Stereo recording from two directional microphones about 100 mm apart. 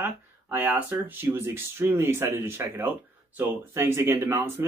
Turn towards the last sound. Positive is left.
turn(degrees=-25)  # may be behind; listen again after turning